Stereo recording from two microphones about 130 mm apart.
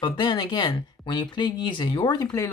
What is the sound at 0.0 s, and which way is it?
Speech, 40° left (ahead or behind).